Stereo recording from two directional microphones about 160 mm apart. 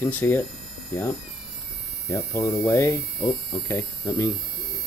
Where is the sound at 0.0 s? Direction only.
15° left (ahead or behind).